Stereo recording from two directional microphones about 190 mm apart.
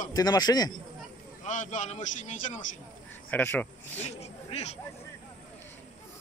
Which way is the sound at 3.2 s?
10° left (ahead or behind).